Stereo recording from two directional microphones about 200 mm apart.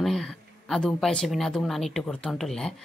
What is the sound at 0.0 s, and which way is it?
A woman's voice, centre (ahead or behind).